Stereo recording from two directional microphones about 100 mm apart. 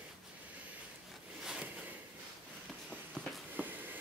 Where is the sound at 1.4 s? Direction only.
5° right (ahead or behind).